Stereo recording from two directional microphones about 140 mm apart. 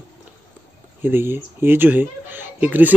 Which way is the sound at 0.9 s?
15° right (ahead or behind).